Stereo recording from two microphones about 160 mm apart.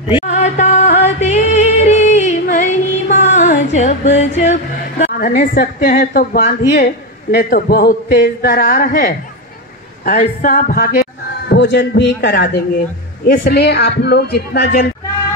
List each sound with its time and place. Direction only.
0.3 s music: 45° left (ahead or behind)
6.7 s a man's voice: 65° left (ahead or behind); by 12.4 s 90° left
13.3 s speech: 75° left (ahead or behind)